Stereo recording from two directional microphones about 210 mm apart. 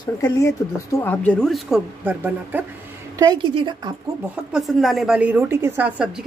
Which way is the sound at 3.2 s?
20° right (ahead or behind).